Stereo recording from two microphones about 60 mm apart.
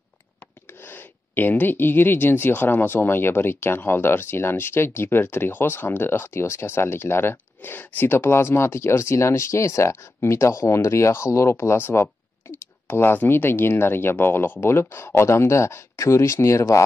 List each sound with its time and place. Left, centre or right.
0.7 s speech: left
11.7 s speech: left